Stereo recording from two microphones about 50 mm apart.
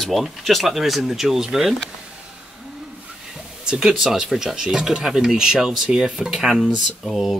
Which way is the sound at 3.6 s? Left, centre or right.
Centre.